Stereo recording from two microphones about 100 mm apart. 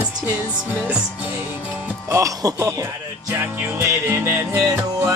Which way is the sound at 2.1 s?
35° right (ahead or behind).